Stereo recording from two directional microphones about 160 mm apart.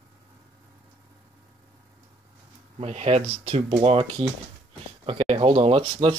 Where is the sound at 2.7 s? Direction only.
40° right (ahead or behind).